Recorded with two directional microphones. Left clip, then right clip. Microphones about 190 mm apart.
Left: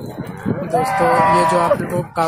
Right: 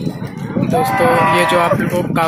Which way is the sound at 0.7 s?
25° right (ahead or behind).